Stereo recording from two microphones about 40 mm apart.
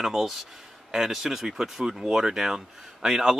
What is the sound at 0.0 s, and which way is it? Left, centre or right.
Speech, centre.